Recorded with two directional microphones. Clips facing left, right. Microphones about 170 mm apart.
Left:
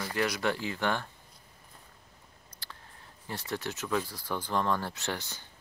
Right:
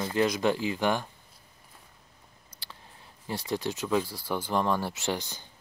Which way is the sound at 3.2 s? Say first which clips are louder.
Right 5 dB; 15° right (ahead or behind).